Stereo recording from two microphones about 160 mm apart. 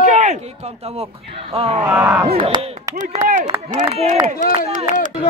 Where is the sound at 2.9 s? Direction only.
50° right (ahead or behind).